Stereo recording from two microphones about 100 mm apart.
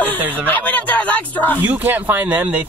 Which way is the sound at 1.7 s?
15° right (ahead or behind).